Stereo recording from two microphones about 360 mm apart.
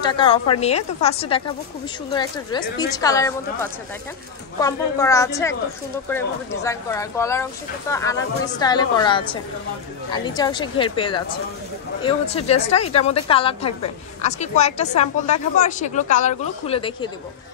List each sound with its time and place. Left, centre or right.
0.0 s a woman's voice: centre
4.6 s a woman's voice: centre